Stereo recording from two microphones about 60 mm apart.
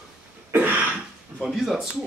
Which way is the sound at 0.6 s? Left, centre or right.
Right.